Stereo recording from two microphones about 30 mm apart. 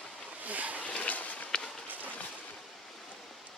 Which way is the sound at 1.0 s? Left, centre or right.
Left.